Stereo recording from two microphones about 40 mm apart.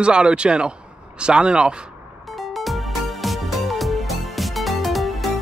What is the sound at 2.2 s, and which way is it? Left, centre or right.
Music, centre.